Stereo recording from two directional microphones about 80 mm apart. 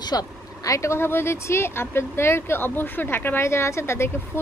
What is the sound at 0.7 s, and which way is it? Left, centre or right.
Speech, left.